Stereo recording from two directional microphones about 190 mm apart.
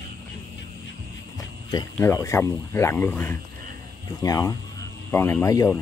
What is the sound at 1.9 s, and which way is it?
Speech, 15° left (ahead or behind).